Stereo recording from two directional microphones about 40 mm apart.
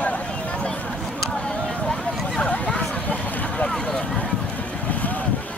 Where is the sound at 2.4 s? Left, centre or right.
Left.